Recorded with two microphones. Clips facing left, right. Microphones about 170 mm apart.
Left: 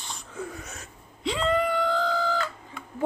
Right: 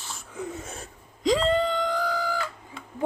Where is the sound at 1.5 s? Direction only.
25° right (ahead or behind).